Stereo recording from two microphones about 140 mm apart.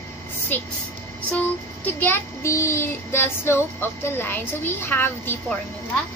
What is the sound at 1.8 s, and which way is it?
Child singing, 15° left (ahead or behind).